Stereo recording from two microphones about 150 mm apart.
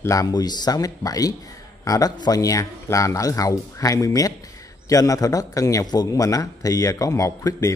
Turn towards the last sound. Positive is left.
turn(degrees=20)  # may be behind; listen again after turning